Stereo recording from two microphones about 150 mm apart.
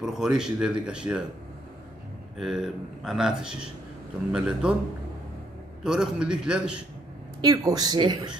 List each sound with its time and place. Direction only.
0.0 s a man's voice: 5° right (ahead or behind)
2.3 s a man's voice: centre (ahead or behind)
5.9 s speech: 5° right (ahead or behind)
7.4 s speech: 25° right (ahead or behind)